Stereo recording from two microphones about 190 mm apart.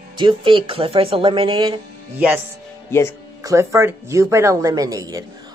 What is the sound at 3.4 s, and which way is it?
Speech, 15° right (ahead or behind).